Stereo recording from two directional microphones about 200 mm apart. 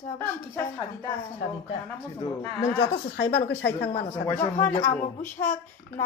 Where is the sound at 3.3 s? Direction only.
55° left (ahead or behind).